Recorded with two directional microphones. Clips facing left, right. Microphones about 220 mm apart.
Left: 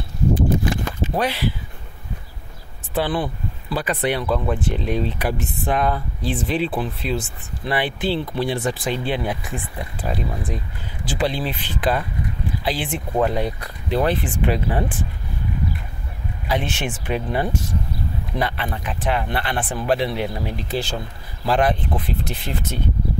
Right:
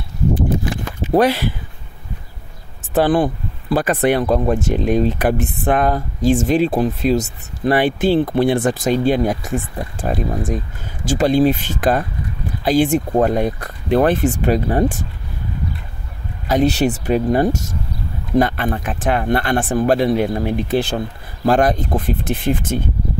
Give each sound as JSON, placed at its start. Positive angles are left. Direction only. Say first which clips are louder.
{"t": 1.1, "sound": "speech", "louder": "right 9 dB", "side_deg": -45}
{"t": 2.9, "sound": "speech", "louder": "right 8 dB", "side_deg": -45}
{"t": 16.4, "sound": "speech", "louder": "right 9 dB", "side_deg": -40}
{"t": 21.5, "sound": "speech", "louder": "right 5 dB", "side_deg": -45}